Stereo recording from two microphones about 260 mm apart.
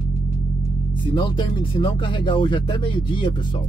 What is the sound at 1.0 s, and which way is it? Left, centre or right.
Speech, centre.